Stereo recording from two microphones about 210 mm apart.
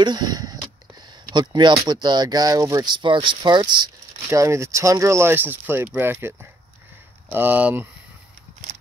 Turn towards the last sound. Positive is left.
turn(degrees=-5)  # may be behind; listen again after turning